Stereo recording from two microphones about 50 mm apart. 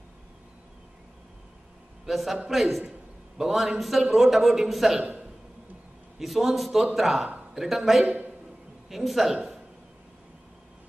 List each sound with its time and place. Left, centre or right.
2.0 s a man's voice: centre
6.1 s a man's voice: centre
8.0 s a man's voice: right
8.8 s a man's voice: centre